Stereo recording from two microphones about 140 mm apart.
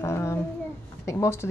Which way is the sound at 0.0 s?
20° left (ahead or behind).